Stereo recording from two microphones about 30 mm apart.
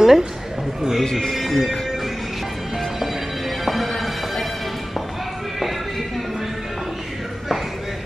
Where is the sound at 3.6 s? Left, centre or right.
Centre.